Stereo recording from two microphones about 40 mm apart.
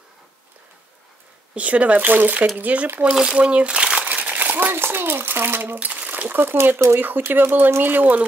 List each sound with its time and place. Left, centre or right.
1.5 s speech: right
3.1 s speech: centre
3.3 s crumpling: right
4.4 s a sound: right
4.7 s a child's voice: right
5.8 s a sound: right
6.4 s speech: right
7.9 s speech: right